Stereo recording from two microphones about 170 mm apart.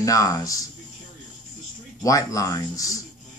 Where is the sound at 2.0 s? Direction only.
20° left (ahead or behind).